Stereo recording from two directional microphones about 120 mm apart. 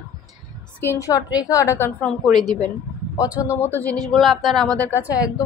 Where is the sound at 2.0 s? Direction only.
5° left (ahead or behind).